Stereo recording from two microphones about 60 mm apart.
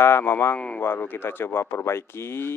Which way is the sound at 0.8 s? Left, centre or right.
Left.